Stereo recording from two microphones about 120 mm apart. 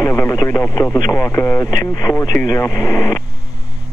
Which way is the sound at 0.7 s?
25° left (ahead or behind).